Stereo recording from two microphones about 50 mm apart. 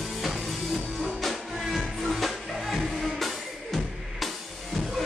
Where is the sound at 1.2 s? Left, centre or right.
Centre.